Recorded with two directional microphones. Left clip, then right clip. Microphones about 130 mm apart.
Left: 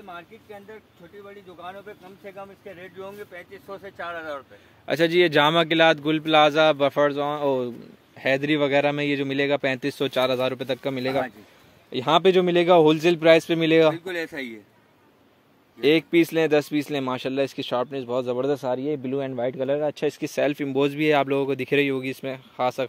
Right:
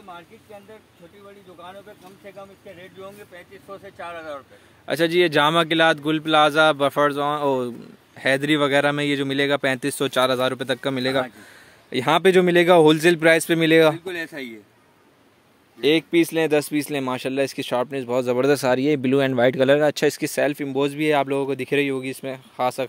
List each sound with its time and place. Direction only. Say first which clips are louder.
2.2 s speech: left 1 dB; 15° left (ahead or behind)
4.8 s speech: right 1 dB; 10° right (ahead or behind); by 13.9 s 30° right (ahead or behind)
13.9 s speech: even; 5° right (ahead or behind)
15.8 s speech: right 1 dB; 5° right (ahead or behind); by 18.2 s 35° right (ahead or behind)
18.2 s speech: right 8 dB; 70° right (ahead or behind)
19.9 s speech: right 5 dB; 90° right
20.5 s speech: even; 10° right (ahead or behind)